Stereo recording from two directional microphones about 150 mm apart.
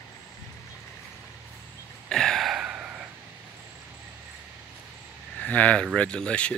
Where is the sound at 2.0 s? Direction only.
5° left (ahead or behind).